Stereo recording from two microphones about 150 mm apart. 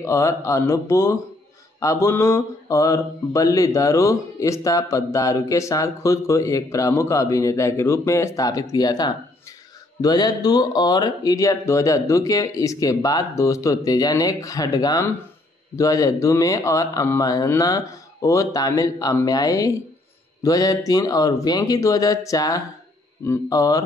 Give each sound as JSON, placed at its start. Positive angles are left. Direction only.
{"t": 0.0, "sound": "mantra", "side_deg": 20}